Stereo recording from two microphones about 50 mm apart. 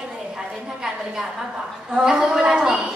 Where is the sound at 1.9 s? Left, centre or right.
Centre.